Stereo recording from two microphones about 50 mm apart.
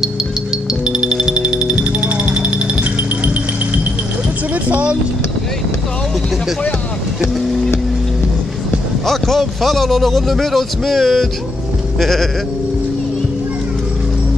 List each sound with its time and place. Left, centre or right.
0.8 s music: centre
4.6 s vehicle: right
7.2 s vehicle: centre
9.0 s a man's voice: centre